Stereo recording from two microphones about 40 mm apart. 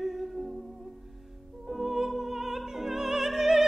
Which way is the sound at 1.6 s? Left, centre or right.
Centre.